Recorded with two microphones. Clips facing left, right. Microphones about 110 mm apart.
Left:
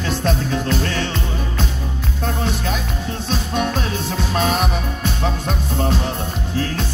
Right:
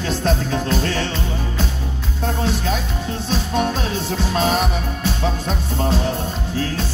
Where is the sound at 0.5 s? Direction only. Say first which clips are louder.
Even; 40° right (ahead or behind).